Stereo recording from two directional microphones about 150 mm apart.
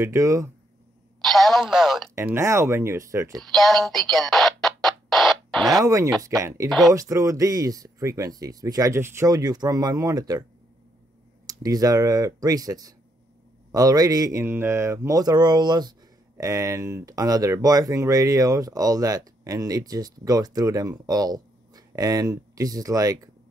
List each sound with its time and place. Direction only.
0.0 s speech: 20° right (ahead or behind)
1.2 s speech: centre (ahead or behind)
2.2 s speech: 15° right (ahead or behind)
3.4 s music: centre (ahead or behind)
5.8 s speech: 20° right (ahead or behind)
11.4 s speech: 25° right (ahead or behind)